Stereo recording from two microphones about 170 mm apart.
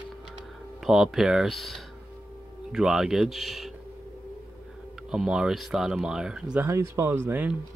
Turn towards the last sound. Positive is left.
turn(degrees=-10)  # may be behind; listen again after turning